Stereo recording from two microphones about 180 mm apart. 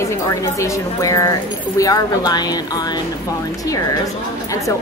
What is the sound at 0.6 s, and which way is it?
A woman's voice, 20° left (ahead or behind).